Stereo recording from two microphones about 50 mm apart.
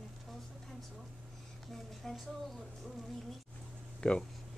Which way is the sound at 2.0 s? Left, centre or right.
Centre.